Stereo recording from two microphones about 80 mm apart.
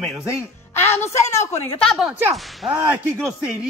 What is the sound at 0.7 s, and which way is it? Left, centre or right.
Speech, left.